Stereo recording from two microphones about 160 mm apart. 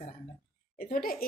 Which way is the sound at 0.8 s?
60° left (ahead or behind).